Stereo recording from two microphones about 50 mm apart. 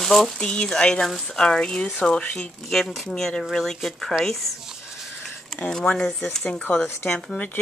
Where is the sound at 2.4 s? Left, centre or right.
Centre.